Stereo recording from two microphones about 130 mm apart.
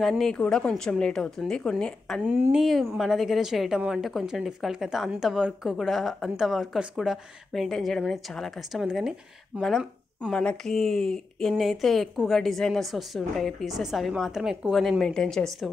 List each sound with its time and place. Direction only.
0.2 s a woman's voice: 5° left (ahead or behind)
2.2 s speech: 15° right (ahead or behind)
2.5 s a woman's voice: centre (ahead or behind)